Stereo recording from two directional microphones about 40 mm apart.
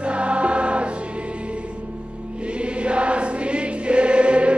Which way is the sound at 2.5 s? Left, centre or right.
Right.